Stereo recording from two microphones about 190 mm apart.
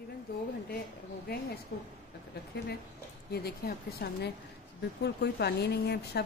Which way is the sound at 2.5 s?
60° left (ahead or behind).